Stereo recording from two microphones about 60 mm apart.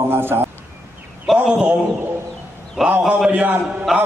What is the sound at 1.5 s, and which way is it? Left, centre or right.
Speech, right.